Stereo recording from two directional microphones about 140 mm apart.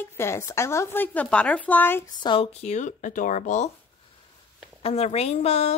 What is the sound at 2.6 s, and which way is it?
Speech, 60° left (ahead or behind).